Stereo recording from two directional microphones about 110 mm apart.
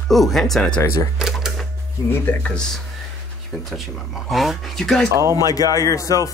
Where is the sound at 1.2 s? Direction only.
Centre (ahead or behind).